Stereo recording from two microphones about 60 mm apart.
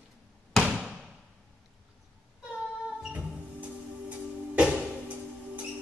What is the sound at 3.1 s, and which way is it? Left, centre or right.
Music, right.